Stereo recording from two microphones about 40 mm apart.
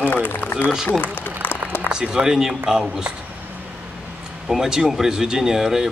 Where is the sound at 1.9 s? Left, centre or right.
Right.